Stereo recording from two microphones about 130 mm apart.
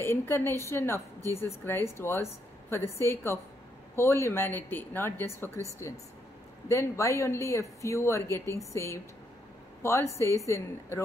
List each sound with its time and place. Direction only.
0.0 s a woman's voice: 20° left (ahead or behind)
6.7 s a woman's voice: 20° left (ahead or behind)